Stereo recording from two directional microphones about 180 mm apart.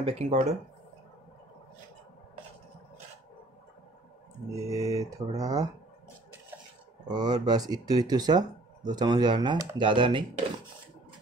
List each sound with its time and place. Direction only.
0.0 s speech: 35° right (ahead or behind)
4.6 s speech: 20° right (ahead or behind)
7.1 s speech: 25° right (ahead or behind)